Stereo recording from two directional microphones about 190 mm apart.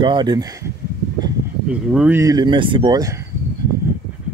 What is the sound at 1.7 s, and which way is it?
Speech, 5° right (ahead or behind).